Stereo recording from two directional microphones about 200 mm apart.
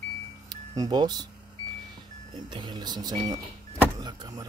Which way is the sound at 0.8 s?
20° right (ahead or behind).